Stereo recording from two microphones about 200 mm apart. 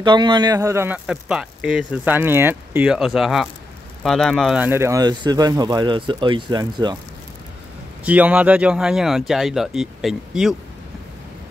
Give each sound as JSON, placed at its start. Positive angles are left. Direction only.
{"t": 0.0, "sound": "speech", "side_deg": -20}
{"t": 4.6, "sound": "speech", "side_deg": -15}
{"t": 8.0, "sound": "speech", "side_deg": -5}